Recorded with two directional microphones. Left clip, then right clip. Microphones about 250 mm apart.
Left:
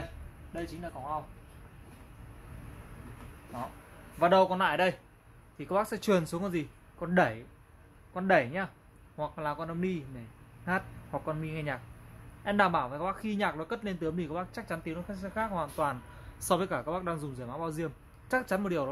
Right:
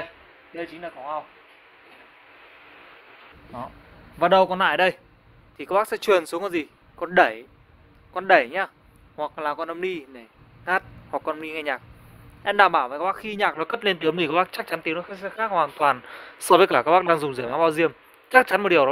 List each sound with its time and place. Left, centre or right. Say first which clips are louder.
4.2 s a man's voice: right 7 dB; right